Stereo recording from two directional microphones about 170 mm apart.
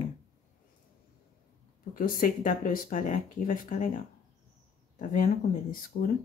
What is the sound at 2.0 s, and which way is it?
Speech, 55° left (ahead or behind).